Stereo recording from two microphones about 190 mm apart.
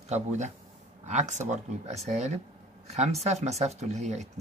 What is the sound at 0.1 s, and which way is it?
Speech, 35° right (ahead or behind).